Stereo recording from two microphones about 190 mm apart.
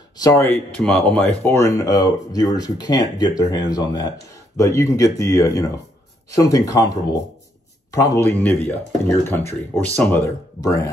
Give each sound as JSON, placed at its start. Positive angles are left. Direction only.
{"t": 0.2, "sound": "speech", "side_deg": 15}
{"t": 0.8, "sound": "speech", "side_deg": 5}